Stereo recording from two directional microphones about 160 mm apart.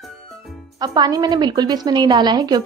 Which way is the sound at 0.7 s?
25° right (ahead or behind).